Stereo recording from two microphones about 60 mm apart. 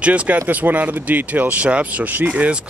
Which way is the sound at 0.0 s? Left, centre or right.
Right.